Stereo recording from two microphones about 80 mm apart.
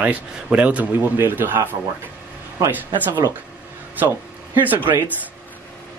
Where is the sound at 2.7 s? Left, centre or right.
Right.